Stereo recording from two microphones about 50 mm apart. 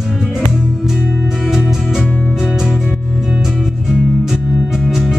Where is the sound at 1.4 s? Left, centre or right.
Centre.